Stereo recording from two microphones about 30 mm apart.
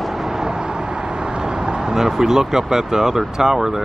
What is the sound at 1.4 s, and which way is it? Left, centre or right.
Speech, right.